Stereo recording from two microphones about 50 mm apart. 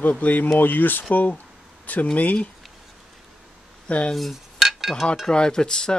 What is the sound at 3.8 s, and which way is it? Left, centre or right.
Speech, left.